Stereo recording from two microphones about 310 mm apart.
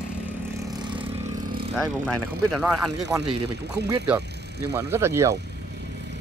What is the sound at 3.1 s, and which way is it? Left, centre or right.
Speech, centre.